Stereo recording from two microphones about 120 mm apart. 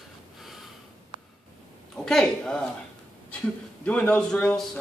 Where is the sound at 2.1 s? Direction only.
5° left (ahead or behind).